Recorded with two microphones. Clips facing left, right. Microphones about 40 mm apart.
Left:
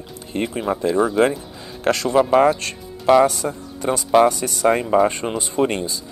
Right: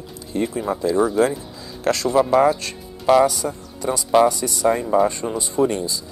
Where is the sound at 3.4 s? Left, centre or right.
Left.